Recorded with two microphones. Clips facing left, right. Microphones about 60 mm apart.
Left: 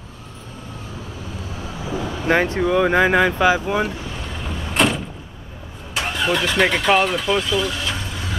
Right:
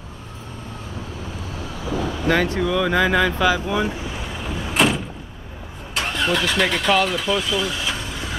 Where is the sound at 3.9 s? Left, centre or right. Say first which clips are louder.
Right 1 dB; centre.